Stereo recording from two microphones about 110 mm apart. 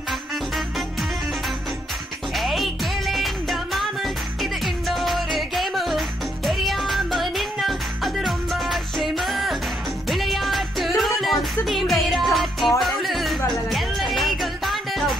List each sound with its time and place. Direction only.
0.1 s music: centre (ahead or behind)
2.3 s music: centre (ahead or behind)